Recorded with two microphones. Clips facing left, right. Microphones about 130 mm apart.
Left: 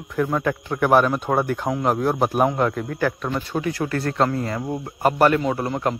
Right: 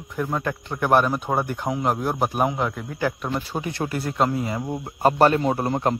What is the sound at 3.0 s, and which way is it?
Speech, 10° right (ahead or behind).